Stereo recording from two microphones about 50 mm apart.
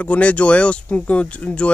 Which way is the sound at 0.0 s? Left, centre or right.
Left.